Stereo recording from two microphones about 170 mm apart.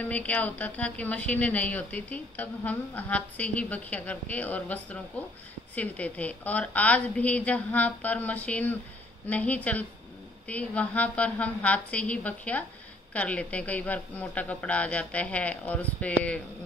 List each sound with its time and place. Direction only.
0.0 s a woman's voice: 10° left (ahead or behind)